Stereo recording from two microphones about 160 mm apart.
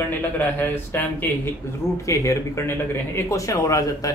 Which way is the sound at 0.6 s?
10° left (ahead or behind).